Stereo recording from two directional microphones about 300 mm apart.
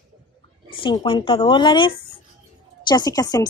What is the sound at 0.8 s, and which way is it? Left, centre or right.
Speech, centre.